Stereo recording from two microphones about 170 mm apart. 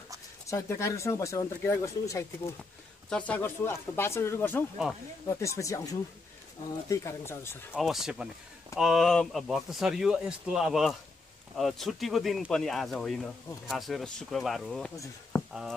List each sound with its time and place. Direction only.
0.5 s speech: 15° left (ahead or behind)
7.7 s speech: centre (ahead or behind)
15.3 s a sound: 20° left (ahead or behind)